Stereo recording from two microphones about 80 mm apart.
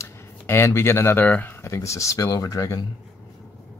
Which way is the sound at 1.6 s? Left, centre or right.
Left.